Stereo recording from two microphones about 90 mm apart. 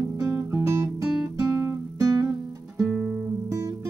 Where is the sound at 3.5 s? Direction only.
30° right (ahead or behind).